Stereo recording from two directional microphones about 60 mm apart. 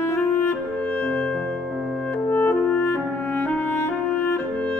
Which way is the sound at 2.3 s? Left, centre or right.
Left.